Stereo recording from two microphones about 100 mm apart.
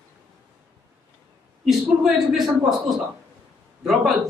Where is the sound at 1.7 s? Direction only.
Centre (ahead or behind).